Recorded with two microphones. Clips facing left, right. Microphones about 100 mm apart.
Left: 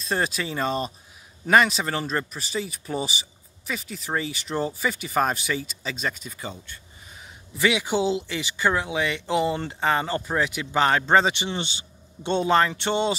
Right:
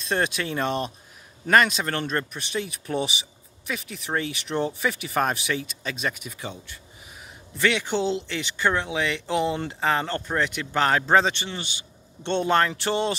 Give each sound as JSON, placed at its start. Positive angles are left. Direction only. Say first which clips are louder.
{"t": 0.0, "sound": "speech", "louder": "right 1 dB", "side_deg": 0}
{"t": 11.3, "sound": "a man's voice", "louder": "left 4 dB", "side_deg": 20}
{"t": 12.2, "sound": "speech", "louder": "left 1 dB", "side_deg": 5}